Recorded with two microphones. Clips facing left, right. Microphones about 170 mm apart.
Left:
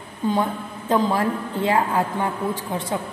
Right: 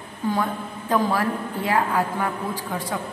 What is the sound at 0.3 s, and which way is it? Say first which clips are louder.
A woman's voice: left 2 dB; 20° left (ahead or behind).